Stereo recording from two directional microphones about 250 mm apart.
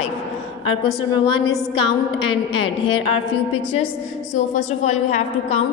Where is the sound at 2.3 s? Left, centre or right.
Left.